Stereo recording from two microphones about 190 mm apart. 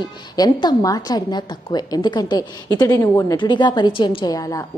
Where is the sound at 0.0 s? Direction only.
20° left (ahead or behind).